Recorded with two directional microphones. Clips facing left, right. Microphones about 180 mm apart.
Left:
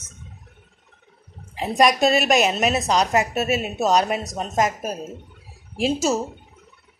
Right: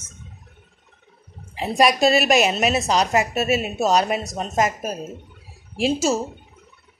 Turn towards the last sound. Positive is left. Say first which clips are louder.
# right 1 dB
turn(degrees=0)  # may be behind; listen again after turning